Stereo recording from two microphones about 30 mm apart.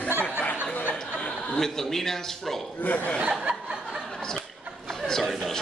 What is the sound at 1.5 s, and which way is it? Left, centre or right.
A man's voice, centre.